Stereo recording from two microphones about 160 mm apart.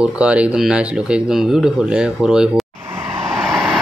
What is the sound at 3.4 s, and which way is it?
Vehicle, centre (ahead or behind).